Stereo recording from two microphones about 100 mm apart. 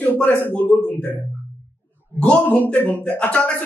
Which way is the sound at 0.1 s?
20° left (ahead or behind).